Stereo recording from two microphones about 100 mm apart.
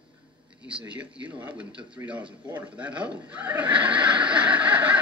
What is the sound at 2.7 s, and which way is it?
Neigh, 15° right (ahead or behind).